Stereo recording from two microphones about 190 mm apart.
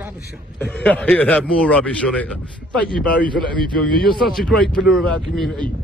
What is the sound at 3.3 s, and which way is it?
Speech, 25° right (ahead or behind).